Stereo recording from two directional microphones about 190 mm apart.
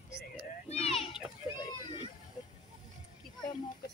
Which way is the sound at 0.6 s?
30° left (ahead or behind).